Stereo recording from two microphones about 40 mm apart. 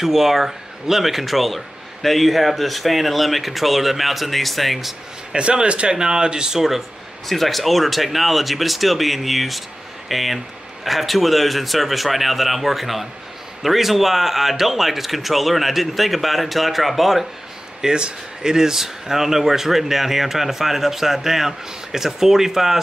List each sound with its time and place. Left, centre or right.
0.0 s speech: centre
5.3 s speech: right
7.2 s speech: centre
17.8 s speech: centre